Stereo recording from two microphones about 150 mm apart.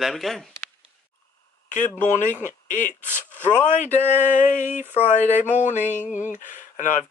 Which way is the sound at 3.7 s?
55° left (ahead or behind).